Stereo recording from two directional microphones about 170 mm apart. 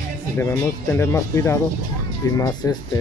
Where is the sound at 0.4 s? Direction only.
15° left (ahead or behind).